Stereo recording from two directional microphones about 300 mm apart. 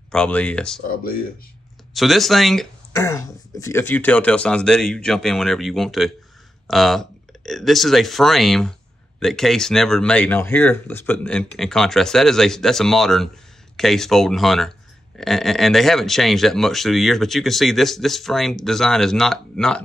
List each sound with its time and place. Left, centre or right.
0.1 s speech: centre
0.8 s speech: left
2.0 s speech: centre